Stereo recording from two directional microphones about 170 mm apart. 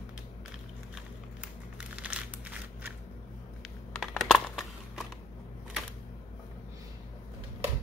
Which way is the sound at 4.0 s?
Centre (ahead or behind).